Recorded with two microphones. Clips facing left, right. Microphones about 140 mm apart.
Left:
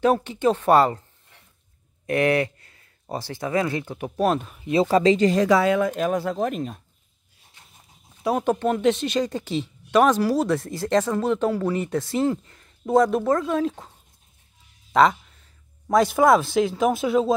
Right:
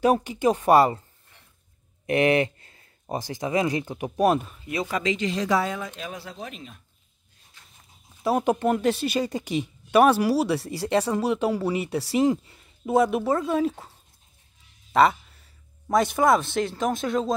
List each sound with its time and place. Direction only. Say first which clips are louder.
0.0 s speech: left 1 dB; 10° right (ahead or behind)
2.0 s a sound: even; 20° right (ahead or behind)
3.1 s speech: even; 15° right (ahead or behind)
4.6 s speech: left 10 dB; 30° left (ahead or behind); by 5.5 s 45° left (ahead or behind)
5.5 s speech: left 6 dB; 80° left
5.9 s speech: left 13 dB; 50° left (ahead or behind)
8.2 s speech: even; centre (ahead or behind)
14.9 s a sound: left 1 dB; 5° right (ahead or behind)
15.9 s speech: left 3 dB; centre (ahead or behind)